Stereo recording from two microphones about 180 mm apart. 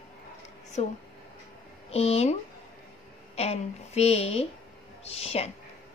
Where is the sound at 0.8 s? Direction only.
40° left (ahead or behind).